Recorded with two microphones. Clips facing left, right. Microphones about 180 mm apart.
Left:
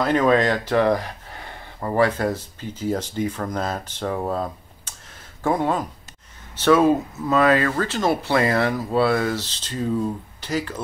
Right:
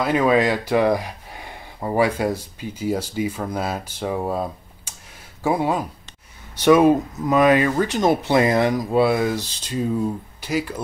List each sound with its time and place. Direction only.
0.0 s speech: 10° right (ahead or behind)